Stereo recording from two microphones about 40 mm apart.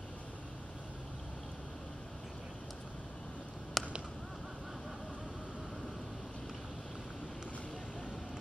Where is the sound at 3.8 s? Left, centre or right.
Centre.